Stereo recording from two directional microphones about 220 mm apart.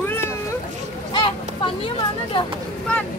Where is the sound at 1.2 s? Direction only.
20° left (ahead or behind).